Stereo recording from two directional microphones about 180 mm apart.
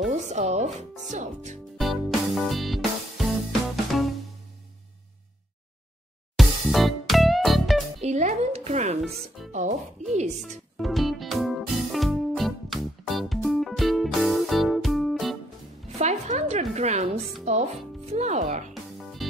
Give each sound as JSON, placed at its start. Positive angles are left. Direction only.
{"t": 0.1, "sound": "speech", "side_deg": -40}
{"t": 1.8, "sound": "music", "side_deg": 0}
{"t": 6.3, "sound": "music", "side_deg": 0}
{"t": 8.0, "sound": "music", "side_deg": -40}
{"t": 9.0, "sound": "speech", "side_deg": 0}
{"t": 9.5, "sound": "speech", "side_deg": -40}
{"t": 10.8, "sound": "music", "side_deg": 0}
{"t": 16.0, "sound": "music", "side_deg": -40}
{"t": 17.5, "sound": "speech", "side_deg": -40}
{"t": 18.7, "sound": "music", "side_deg": 0}